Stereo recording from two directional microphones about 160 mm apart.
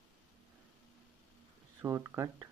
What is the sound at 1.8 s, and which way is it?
Speech, 15° right (ahead or behind).